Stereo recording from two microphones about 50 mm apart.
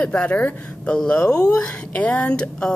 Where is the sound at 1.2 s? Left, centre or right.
Centre.